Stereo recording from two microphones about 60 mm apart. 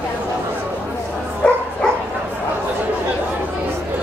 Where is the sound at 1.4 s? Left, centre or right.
Left.